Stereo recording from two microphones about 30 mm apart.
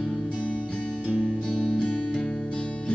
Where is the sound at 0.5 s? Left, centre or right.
Left.